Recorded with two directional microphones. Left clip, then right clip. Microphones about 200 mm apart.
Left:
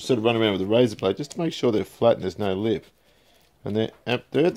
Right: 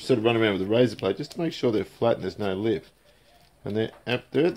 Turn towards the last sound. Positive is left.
turn(degrees=50)  # may be behind; listen again after turning